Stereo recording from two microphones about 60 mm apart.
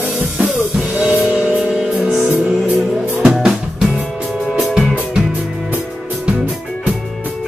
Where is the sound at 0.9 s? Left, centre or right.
Centre.